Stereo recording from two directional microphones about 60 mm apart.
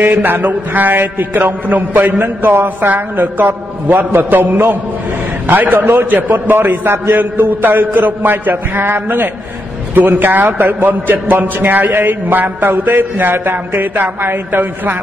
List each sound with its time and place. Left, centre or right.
0.0 s a man's voice: right